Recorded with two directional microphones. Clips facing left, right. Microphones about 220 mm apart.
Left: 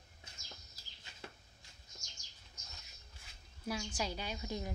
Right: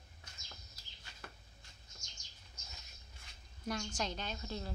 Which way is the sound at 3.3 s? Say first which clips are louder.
Even; 5° left (ahead or behind).